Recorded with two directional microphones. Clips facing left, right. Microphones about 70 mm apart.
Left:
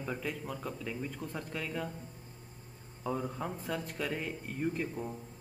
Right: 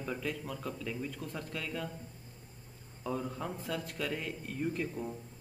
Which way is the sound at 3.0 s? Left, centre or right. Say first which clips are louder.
Left 1 dB; centre.